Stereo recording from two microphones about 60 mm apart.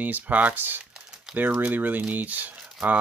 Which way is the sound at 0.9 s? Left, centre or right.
Centre.